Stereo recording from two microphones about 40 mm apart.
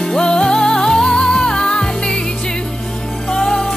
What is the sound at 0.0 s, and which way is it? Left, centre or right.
Music, centre.